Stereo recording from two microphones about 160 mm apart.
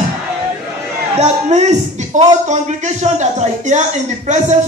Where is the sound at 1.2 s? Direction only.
45° right (ahead or behind).